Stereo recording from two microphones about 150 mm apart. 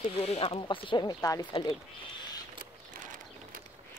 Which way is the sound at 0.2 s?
40° left (ahead or behind).